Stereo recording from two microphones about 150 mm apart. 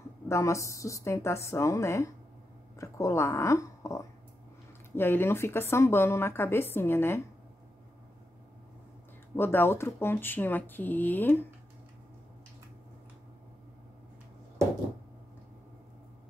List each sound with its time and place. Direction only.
0.3 s a woman's voice: 20° left (ahead or behind)
9.4 s a woman's voice: 15° left (ahead or behind)